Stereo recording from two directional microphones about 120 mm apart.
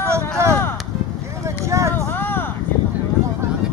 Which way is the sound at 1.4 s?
25° right (ahead or behind).